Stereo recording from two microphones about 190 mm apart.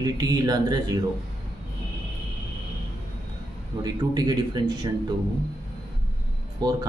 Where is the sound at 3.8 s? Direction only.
20° right (ahead or behind).